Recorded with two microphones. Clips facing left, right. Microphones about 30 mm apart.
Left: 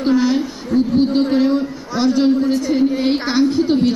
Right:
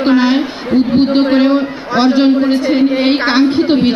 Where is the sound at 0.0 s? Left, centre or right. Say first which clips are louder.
Right 5 dB; right.